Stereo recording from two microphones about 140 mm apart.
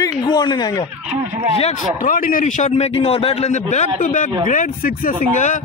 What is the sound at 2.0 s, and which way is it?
Speech, 75° left (ahead or behind).